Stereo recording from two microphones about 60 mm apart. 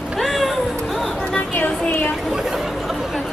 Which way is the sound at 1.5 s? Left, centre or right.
Left.